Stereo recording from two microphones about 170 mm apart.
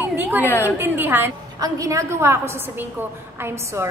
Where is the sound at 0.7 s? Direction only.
10° right (ahead or behind).